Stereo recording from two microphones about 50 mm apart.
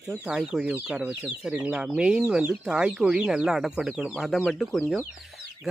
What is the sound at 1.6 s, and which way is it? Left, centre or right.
Speech, right.